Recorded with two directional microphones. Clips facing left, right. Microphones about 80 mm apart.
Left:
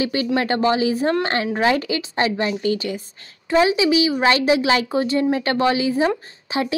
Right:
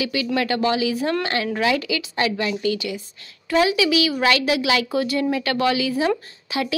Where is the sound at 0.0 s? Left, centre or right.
Left.